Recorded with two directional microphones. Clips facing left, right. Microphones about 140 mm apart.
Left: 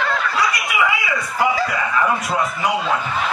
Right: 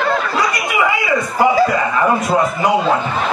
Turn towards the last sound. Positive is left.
turn(degrees=-30)  # may be behind; listen again after turning